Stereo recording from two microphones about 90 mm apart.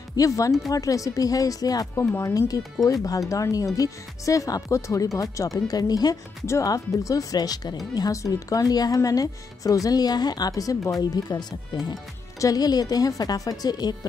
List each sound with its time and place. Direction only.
0.1 s speech: 40° left (ahead or behind)
2.0 s speech: 30° left (ahead or behind)
2.3 s speech: 40° left (ahead or behind)
6.4 s a woman's voice: 35° left (ahead or behind)